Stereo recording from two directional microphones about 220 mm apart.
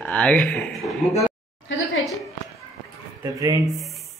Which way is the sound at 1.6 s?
60° left (ahead or behind).